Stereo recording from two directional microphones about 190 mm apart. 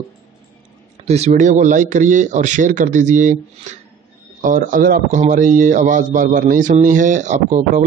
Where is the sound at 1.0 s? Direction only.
35° right (ahead or behind).